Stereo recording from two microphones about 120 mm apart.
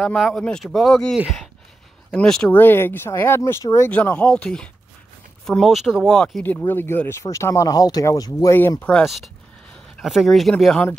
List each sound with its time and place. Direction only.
0.0 s speech: 5° left (ahead or behind)
2.5 s speech: 20° left (ahead or behind)
6.4 s speech: 15° left (ahead or behind)
8.5 s speech: 15° left (ahead or behind)
8.9 s speech: centre (ahead or behind)